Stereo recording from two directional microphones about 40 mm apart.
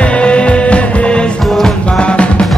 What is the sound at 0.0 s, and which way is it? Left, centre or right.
Music, left.